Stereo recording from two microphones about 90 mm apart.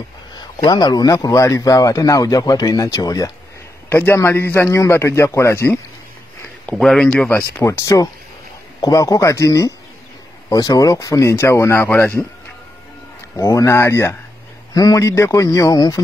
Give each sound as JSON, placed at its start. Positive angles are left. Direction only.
{"t": 0.4, "sound": "speech", "side_deg": 50}
{"t": 3.9, "sound": "a man's voice", "side_deg": 25}
{"t": 6.7, "sound": "speech", "side_deg": 5}
{"t": 7.6, "sound": "speech", "side_deg": 40}
{"t": 13.4, "sound": "speech", "side_deg": 40}
{"t": 13.7, "sound": "a man's voice", "side_deg": 30}
{"t": 14.7, "sound": "speech", "side_deg": 45}